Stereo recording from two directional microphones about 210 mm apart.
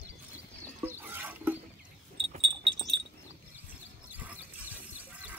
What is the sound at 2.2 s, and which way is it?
Wind chime, 25° right (ahead or behind).